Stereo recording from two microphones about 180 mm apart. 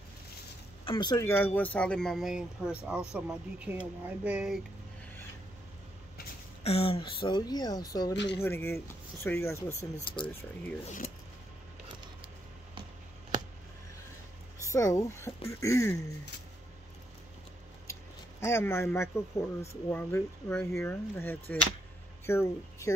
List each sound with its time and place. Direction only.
0.8 s speech: 25° left (ahead or behind); by 4.6 s 5° right (ahead or behind)
6.6 s speech: 35° left (ahead or behind); by 9.8 s 15° left (ahead or behind)
9.9 s speech: 25° left (ahead or behind)
14.7 s speech: 15° left (ahead or behind)
18.4 s speech: 15° left (ahead or behind)